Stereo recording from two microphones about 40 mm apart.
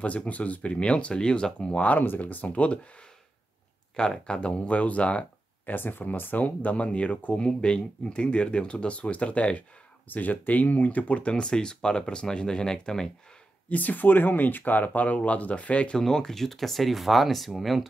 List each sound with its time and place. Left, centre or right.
0.3 s speech: left
1.8 s speech: left
3.9 s speech: centre
5.7 s speech: left
6.3 s speech: left
7.3 s speech: left
10.0 s speech: left; by 13.1 s centre
13.7 s speech: left
16.0 s speech: centre